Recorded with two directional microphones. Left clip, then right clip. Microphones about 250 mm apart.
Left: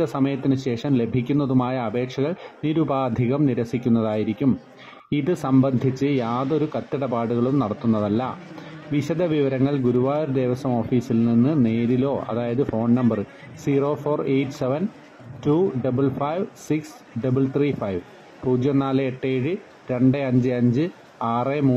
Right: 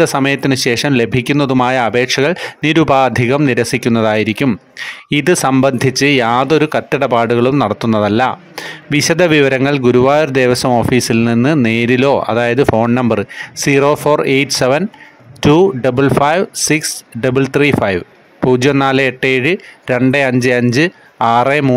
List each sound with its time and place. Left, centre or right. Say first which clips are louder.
0.0 s speech: right 11 dB; right
12.5 s speech: right 11 dB; right
13.7 s speech: right 11 dB; right
15.8 s speech: right 12 dB; right